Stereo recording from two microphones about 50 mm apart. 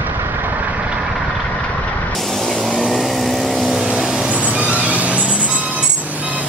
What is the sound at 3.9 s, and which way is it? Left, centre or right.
Vehicle, centre.